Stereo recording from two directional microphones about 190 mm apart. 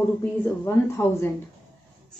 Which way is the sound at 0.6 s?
15° left (ahead or behind).